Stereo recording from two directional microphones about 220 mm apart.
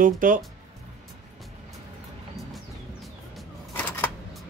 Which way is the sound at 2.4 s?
Centre (ahead or behind).